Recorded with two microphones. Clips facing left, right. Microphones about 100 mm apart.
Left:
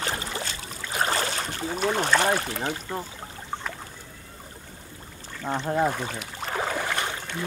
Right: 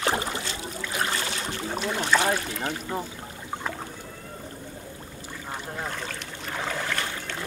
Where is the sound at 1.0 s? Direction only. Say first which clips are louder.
Left 3 dB; 35° left (ahead or behind).